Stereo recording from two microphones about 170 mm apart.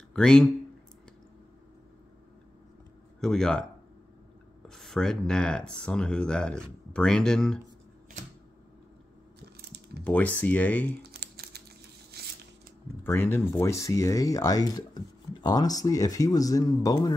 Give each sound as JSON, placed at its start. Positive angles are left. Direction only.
{"t": 0.1, "sound": "speech", "side_deg": 5}
{"t": 3.2, "sound": "speech", "side_deg": 5}
{"t": 4.6, "sound": "speech", "side_deg": 5}
{"t": 10.0, "sound": "speech", "side_deg": 10}
{"t": 11.0, "sound": "crumpling", "side_deg": -65}
{"t": 12.2, "sound": "a sound", "side_deg": -65}
{"t": 13.0, "sound": "speech", "side_deg": 15}